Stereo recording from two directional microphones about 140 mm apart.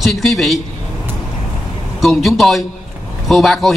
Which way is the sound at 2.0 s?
Centre (ahead or behind).